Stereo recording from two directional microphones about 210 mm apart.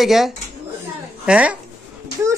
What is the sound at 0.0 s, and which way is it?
A man's voice, centre (ahead or behind).